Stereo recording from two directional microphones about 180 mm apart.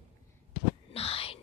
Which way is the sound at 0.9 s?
35° left (ahead or behind).